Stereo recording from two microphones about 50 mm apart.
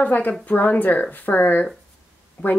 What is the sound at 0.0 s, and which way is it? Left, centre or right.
Speech, left.